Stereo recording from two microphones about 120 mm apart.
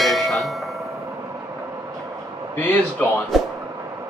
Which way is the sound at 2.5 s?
15° left (ahead or behind).